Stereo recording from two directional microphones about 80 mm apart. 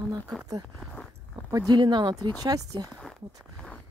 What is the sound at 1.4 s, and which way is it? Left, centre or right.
Speech, right.